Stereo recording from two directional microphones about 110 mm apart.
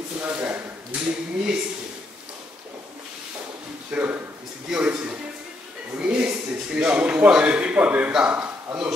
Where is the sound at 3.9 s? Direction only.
15° right (ahead or behind).